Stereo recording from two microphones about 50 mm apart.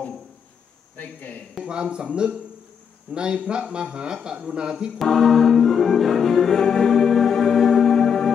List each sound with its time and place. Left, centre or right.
1.6 s speech: centre
4.9 s music: centre